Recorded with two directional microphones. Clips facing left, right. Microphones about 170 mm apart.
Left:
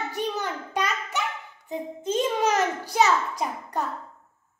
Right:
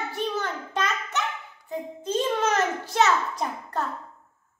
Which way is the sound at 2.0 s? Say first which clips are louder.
Left 1 dB; 20° left (ahead or behind).